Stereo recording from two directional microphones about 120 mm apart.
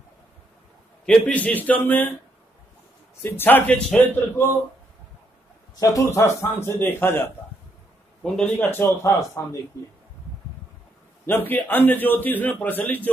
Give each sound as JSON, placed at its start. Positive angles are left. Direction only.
{"t": 1.0, "sound": "a man's voice", "side_deg": 10}
{"t": 3.2, "sound": "a man's voice", "side_deg": 15}
{"t": 5.8, "sound": "a man's voice", "side_deg": 30}
{"t": 8.5, "sound": "a man's voice", "side_deg": 15}
{"t": 11.2, "sound": "a man's voice", "side_deg": 15}